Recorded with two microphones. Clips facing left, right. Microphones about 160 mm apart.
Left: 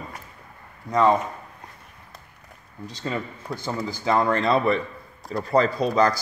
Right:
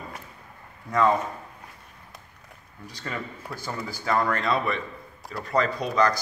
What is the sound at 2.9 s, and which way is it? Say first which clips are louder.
A man's voice: left 5 dB; 20° left (ahead or behind).